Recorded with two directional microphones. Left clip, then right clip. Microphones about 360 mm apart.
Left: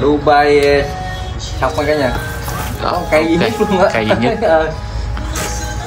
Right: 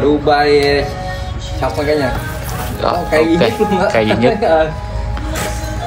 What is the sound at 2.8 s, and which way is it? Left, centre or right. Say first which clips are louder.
Speech: right 1 dB; centre.